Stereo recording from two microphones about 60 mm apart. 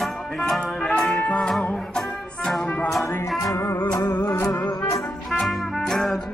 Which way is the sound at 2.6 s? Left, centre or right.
Left.